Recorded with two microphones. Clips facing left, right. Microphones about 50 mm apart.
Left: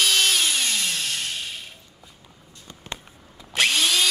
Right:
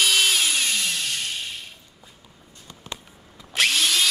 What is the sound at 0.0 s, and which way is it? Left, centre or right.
Tools, centre.